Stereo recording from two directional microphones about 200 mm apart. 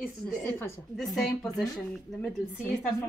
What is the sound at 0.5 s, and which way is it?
Speech, 10° left (ahead or behind).